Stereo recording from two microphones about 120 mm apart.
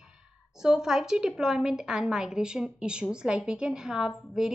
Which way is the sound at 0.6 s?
5° right (ahead or behind).